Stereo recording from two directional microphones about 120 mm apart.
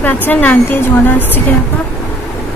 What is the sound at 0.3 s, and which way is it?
A woman's voice, 15° left (ahead or behind).